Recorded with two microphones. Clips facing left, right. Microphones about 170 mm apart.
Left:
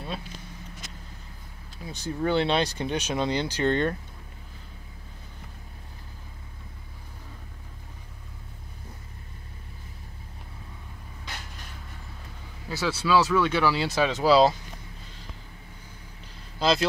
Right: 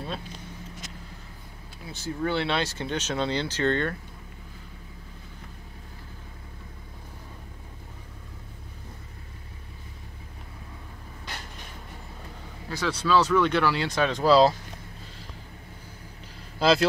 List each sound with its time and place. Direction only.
1.9 s speech: 15° left (ahead or behind)
12.6 s speech: 5° left (ahead or behind)
16.5 s speech: 5° right (ahead or behind)